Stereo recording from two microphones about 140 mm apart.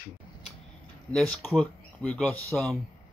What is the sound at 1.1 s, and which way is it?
Speech, 10° left (ahead or behind).